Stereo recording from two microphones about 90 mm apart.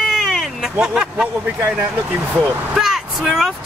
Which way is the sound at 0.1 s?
Centre (ahead or behind).